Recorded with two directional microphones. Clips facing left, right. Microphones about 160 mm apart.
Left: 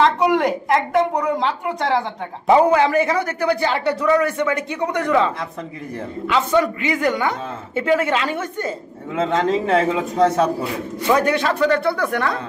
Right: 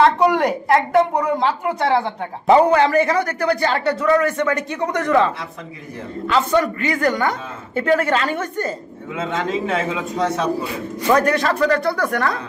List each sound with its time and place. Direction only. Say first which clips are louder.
0.0 s a woman's voice: right 1 dB; centre (ahead or behind)
2.5 s a man's voice: right 1 dB; 5° left (ahead or behind)
9.1 s speech: left 4 dB; 35° left (ahead or behind)
11.1 s a woman's voice: right 1 dB; 5° left (ahead or behind)